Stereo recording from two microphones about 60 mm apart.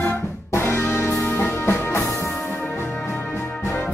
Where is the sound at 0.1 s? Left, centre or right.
Left.